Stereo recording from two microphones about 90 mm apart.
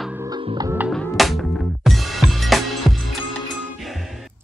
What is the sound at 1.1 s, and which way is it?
Music, centre (ahead or behind).